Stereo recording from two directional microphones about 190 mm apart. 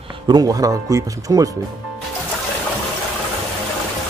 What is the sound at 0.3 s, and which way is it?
Speech, 20° right (ahead or behind).